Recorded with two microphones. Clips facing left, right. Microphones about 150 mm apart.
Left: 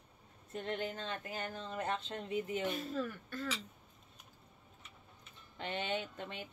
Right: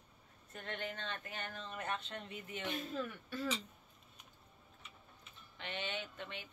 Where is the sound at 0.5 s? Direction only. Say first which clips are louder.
Left 5 dB; 30° left (ahead or behind).